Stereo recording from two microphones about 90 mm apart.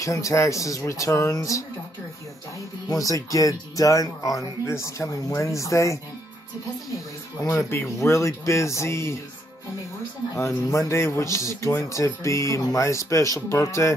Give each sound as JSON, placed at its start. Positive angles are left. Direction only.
{"t": 0.0, "sound": "speech", "side_deg": 35}
{"t": 2.9, "sound": "speech", "side_deg": 40}
{"t": 7.4, "sound": "speech", "side_deg": 25}
{"t": 10.3, "sound": "speech", "side_deg": 35}